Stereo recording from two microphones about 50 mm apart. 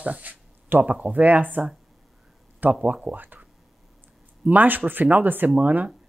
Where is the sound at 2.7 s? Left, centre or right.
Right.